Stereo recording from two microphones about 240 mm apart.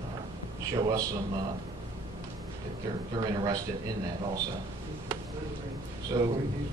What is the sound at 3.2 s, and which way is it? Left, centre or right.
Speech, centre.